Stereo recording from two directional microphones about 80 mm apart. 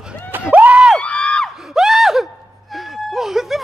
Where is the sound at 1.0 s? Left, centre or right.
Centre.